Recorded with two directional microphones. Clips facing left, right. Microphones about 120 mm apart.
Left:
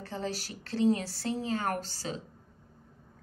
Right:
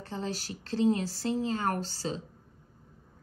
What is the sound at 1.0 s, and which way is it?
A woman's voice, 40° right (ahead or behind).